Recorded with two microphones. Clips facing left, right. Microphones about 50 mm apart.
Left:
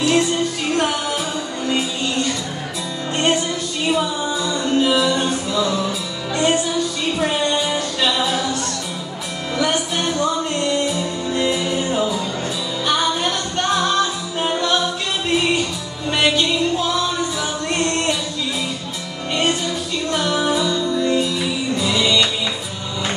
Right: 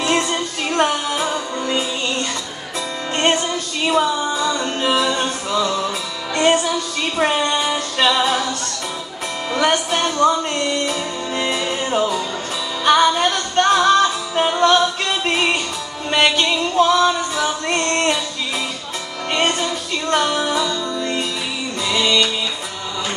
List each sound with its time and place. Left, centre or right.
0.0 s music: right
3.2 s music: right
9.6 s music: right
19.3 s music: right
20.3 s music: centre